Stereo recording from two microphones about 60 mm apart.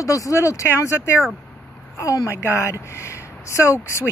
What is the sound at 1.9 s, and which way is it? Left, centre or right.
A woman's voice, left.